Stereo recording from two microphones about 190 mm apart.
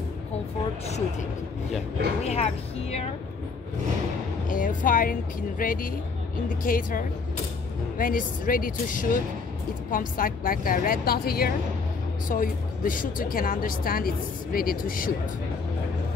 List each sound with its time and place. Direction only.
2.2 s a woman's voice: 35° left (ahead or behind)
4.5 s speech: 45° left (ahead or behind)